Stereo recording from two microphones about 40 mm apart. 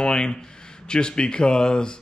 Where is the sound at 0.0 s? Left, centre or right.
Centre.